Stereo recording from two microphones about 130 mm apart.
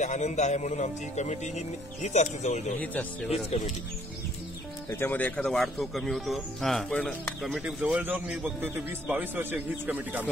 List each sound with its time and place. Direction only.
0.0 s speech: 65° left (ahead or behind)
2.8 s speech: 10° left (ahead or behind)
3.3 s speech: 55° left (ahead or behind)
4.8 s speech: 15° left (ahead or behind); by 10.2 s 15° right (ahead or behind)